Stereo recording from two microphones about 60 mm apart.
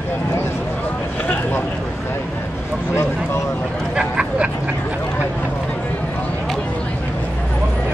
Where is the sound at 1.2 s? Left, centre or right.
Left.